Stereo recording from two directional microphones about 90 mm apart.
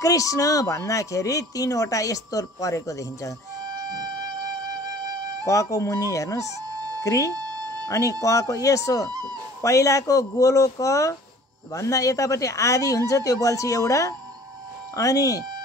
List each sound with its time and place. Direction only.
0.0 s speech: 40° left (ahead or behind)
3.7 s music: 45° right (ahead or behind)
5.5 s speech: 35° left (ahead or behind)
7.3 s a sound: 50° right (ahead or behind)
7.9 s speech: 35° left (ahead or behind)